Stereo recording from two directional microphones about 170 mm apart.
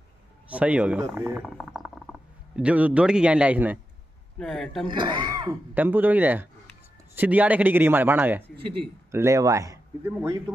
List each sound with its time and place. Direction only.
0.5 s a man's voice: 10° right (ahead or behind)
1.4 s speech: centre (ahead or behind)
4.4 s speech: centre (ahead or behind)
4.8 s speech: 30° right (ahead or behind)
5.8 s a man's voice: 10° right (ahead or behind)